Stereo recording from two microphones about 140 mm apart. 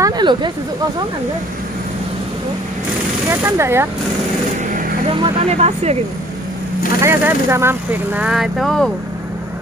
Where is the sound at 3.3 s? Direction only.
20° right (ahead or behind).